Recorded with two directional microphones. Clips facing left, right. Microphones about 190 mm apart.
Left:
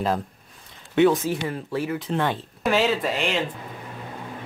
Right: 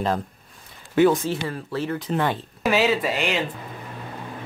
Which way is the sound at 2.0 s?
Centre (ahead or behind).